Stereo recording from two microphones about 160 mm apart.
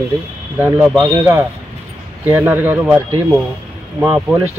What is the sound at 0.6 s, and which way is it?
Speech, 15° right (ahead or behind).